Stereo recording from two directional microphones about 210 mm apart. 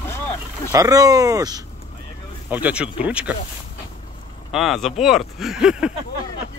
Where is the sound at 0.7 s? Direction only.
15° right (ahead or behind).